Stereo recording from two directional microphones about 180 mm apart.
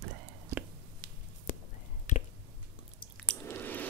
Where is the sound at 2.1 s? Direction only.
45° left (ahead or behind).